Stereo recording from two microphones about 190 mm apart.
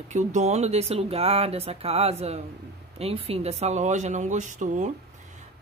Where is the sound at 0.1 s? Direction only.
40° right (ahead or behind).